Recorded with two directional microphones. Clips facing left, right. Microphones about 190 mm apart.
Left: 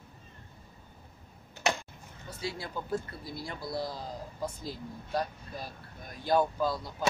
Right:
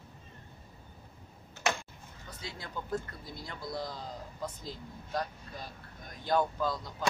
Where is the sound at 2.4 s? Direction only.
10° left (ahead or behind).